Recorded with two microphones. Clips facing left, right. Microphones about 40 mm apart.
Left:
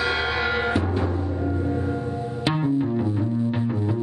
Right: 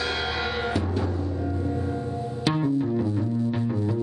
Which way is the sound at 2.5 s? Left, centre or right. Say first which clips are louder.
Left 1 dB; centre.